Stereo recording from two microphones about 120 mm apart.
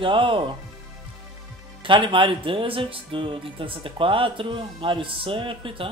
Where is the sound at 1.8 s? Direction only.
45° right (ahead or behind).